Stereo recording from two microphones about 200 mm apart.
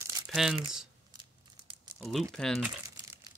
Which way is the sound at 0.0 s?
15° right (ahead or behind).